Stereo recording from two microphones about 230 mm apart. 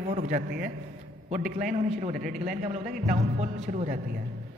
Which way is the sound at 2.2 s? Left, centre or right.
Centre.